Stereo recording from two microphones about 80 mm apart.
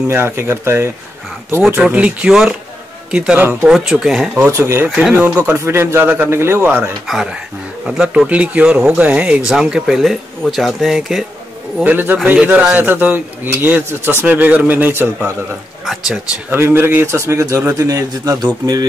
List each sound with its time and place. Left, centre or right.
0.1 s a man's voice: right
1.8 s a man's voice: centre
4.5 s a man's voice: right
4.8 s speech: centre
5.1 s a man's voice: centre
5.5 s a man's voice: right
7.8 s speech: centre
11.8 s a man's voice: right
15.8 s speech: centre
16.4 s a man's voice: right